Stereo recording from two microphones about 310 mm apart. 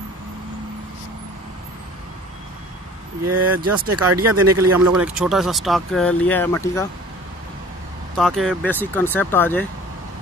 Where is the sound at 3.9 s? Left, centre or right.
Right.